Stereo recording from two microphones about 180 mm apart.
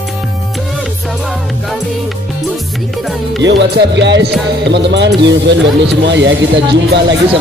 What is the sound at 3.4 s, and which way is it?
Speech, 80° right.